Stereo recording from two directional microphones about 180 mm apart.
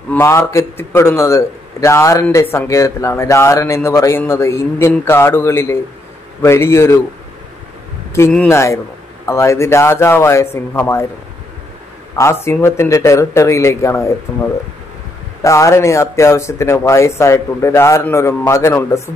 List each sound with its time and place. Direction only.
0.1 s speech: 15° left (ahead or behind)
8.1 s speech: 10° left (ahead or behind)
12.2 s speech: 15° left (ahead or behind)
15.4 s speech: 15° left (ahead or behind)